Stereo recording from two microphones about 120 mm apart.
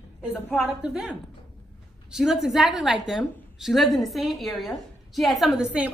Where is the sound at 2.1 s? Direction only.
5° right (ahead or behind).